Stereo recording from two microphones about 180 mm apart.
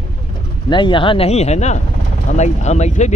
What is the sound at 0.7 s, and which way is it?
Speech, 25° left (ahead or behind).